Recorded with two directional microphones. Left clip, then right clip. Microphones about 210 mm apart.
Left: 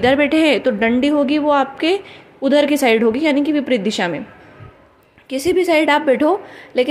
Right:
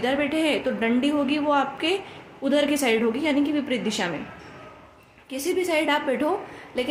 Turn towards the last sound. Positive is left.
turn(degrees=35)  # may be behind; listen again after turning